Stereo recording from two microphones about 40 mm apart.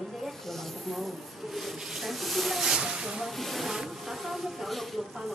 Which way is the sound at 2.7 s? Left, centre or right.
Centre.